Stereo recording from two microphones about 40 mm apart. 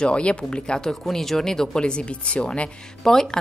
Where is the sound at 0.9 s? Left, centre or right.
Centre; by 2.7 s left.